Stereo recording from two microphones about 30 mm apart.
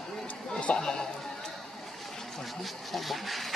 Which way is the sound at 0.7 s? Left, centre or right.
Left.